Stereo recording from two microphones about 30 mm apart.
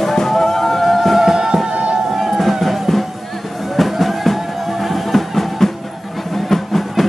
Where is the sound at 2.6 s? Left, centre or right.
Centre.